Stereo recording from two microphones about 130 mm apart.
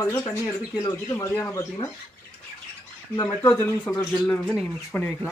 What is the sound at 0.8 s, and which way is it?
Speech, 25° left (ahead or behind).